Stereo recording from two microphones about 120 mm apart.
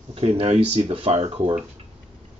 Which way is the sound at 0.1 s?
55° right (ahead or behind).